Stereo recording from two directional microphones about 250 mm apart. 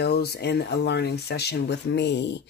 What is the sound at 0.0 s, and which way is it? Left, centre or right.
Speech, left.